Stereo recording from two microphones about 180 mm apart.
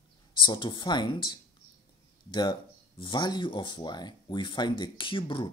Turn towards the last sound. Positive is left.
turn(degrees=30)  # may be behind; listen again after turning